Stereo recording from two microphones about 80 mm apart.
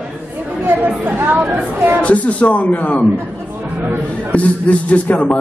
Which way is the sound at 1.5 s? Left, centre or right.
Right.